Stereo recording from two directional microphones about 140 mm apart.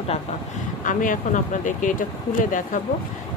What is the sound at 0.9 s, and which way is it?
Speech, 70° left (ahead or behind).